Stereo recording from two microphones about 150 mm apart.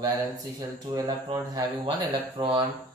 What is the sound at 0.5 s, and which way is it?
Speech, 25° right (ahead or behind).